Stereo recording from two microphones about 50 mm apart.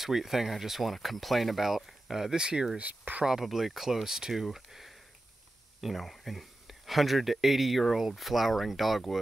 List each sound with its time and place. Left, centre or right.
0.0 s speech: centre
2.8 s speech: right
3.3 s speech: centre